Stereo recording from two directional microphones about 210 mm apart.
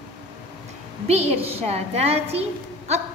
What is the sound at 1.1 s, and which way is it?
A woman's voice, 30° right (ahead or behind).